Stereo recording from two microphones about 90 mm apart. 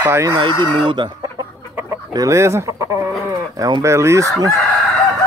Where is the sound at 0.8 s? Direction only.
65° right (ahead or behind).